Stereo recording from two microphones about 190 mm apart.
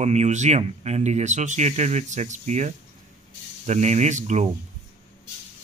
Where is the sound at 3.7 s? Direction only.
35° right (ahead or behind).